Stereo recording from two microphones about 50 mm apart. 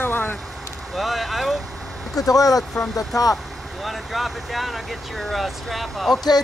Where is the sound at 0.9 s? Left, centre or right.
Centre.